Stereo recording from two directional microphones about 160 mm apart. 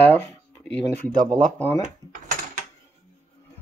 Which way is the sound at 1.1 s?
50° right (ahead or behind).